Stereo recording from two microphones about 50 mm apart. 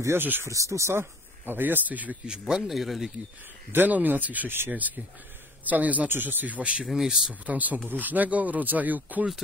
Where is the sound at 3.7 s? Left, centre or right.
Right.